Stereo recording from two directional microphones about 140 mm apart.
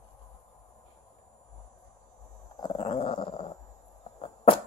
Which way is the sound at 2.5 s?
30° left (ahead or behind).